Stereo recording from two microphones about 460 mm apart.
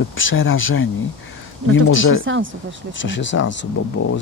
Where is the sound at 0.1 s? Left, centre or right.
Left.